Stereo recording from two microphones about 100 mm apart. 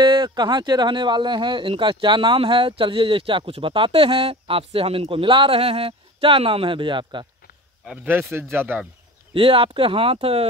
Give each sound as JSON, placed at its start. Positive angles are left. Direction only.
{"t": 0.0, "sound": "speech", "side_deg": -50}
{"t": 7.8, "sound": "a man's voice", "side_deg": -10}
{"t": 8.1, "sound": "speech", "side_deg": -25}
{"t": 9.3, "sound": "speech", "side_deg": -65}